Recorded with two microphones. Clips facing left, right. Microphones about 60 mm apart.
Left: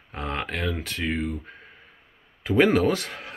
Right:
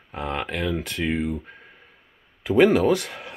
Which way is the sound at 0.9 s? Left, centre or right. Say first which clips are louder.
Right 3 dB; centre.